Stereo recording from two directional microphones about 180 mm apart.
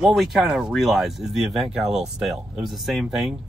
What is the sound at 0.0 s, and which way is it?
Speech, centre (ahead or behind).